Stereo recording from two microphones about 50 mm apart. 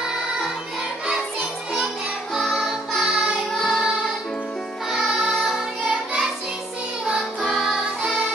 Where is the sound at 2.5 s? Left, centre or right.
Centre.